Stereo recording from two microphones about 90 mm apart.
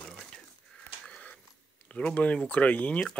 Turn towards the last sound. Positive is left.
turn(degrees=15)  # may be behind; listen again after turning